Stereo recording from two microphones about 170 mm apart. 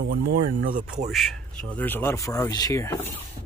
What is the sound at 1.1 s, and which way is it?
Speech, 5° left (ahead or behind).